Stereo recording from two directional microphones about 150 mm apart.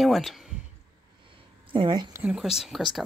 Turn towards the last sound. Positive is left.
turn(degrees=0)  # may be behind; listen again after turning